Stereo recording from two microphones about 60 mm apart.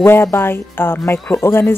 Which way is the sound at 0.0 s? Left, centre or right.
Left.